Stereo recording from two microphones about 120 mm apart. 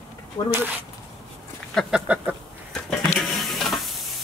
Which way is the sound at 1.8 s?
5° left (ahead or behind).